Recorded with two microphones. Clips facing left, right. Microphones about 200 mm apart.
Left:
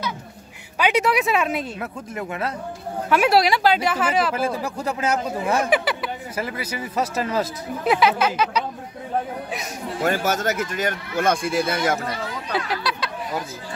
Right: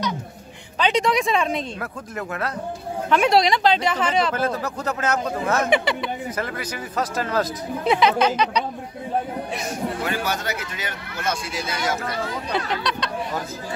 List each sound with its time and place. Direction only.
0.7 s speech: 10° left (ahead or behind)
10.0 s speech: 45° left (ahead or behind)
12.5 s a sound: 5° left (ahead or behind)